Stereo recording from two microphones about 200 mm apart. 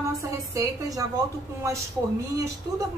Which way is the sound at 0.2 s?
15° right (ahead or behind).